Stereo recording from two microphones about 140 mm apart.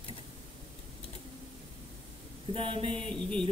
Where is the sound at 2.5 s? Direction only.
40° right (ahead or behind).